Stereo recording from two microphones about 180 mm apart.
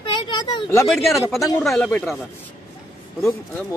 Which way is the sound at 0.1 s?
25° left (ahead or behind).